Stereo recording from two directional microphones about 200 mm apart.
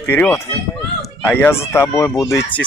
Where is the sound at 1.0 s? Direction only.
10° left (ahead or behind).